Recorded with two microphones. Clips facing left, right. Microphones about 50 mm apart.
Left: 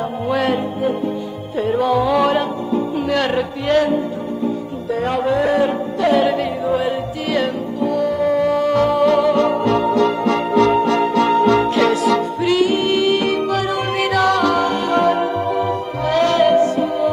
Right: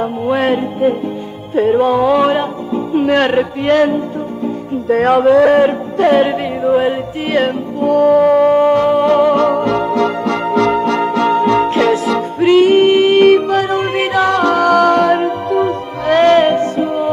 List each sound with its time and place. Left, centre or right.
0.4 s music: right
5.0 s music: right
8.7 s music: right
9.3 s music: right
11.5 s music: right